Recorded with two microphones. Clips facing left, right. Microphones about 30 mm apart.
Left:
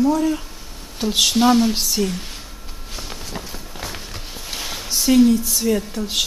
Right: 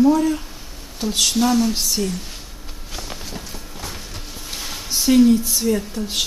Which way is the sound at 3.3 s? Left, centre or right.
Centre.